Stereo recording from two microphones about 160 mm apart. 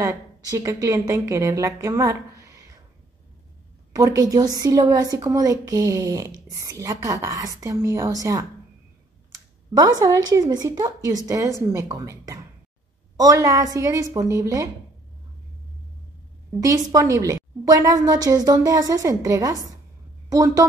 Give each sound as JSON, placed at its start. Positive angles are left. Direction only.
{"t": 0.0, "sound": "speech", "side_deg": -20}
{"t": 3.9, "sound": "a woman's voice", "side_deg": -20}
{"t": 16.5, "sound": "a woman's voice", "side_deg": -20}